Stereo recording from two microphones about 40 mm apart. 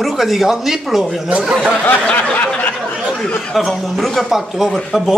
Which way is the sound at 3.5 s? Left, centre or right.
Centre.